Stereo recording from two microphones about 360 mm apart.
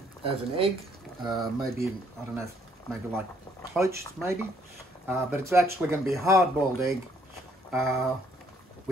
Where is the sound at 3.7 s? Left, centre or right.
Centre.